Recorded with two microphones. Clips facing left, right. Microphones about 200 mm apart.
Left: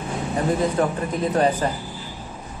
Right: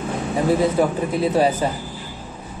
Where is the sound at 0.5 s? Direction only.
10° right (ahead or behind).